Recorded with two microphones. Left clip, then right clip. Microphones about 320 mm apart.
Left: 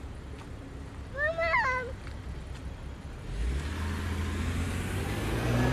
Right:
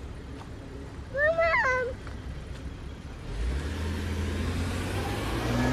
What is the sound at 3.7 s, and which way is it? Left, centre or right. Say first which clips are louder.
Vehicle: right 1 dB; centre.